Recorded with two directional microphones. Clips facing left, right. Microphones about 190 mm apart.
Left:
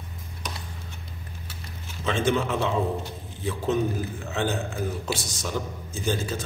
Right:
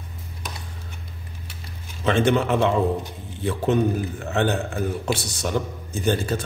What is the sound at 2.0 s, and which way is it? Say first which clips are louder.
Speech: right 5 dB; 65° right (ahead or behind).